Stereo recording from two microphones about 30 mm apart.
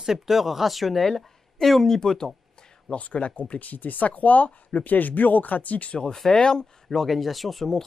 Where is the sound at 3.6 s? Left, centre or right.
Left.